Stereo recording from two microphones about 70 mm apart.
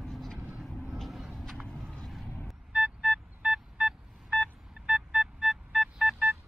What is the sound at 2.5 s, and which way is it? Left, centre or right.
Vehicle, centre.